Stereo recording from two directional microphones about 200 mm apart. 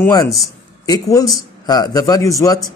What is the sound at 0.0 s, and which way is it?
Speech, 20° left (ahead or behind).